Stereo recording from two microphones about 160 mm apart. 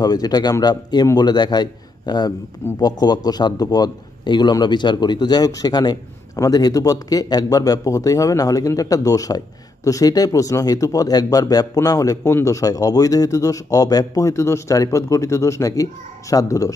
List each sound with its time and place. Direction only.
0.0 s speech: 25° left (ahead or behind)